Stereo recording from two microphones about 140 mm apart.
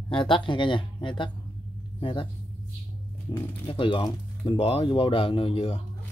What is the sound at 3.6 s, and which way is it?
Speech, 40° left (ahead or behind).